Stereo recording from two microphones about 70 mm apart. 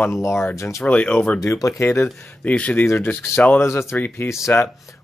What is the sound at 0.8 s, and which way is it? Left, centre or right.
Speech, left.